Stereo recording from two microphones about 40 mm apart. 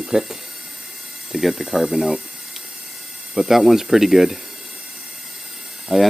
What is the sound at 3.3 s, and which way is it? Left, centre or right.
Speech, centre.